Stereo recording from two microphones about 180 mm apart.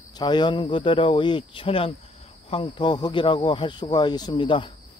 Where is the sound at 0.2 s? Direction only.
25° left (ahead or behind).